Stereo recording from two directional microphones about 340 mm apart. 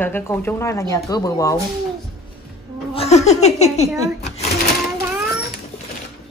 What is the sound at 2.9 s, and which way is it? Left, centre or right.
Giggle, centre.